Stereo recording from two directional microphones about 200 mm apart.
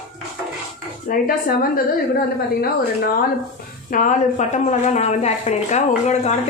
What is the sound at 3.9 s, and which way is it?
A woman's voice, 40° left (ahead or behind).